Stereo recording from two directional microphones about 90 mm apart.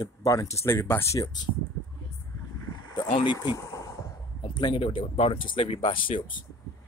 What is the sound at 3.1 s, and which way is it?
Speech, 70° left (ahead or behind).